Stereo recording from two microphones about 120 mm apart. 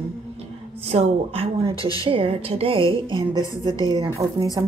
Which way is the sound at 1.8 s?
30° left (ahead or behind).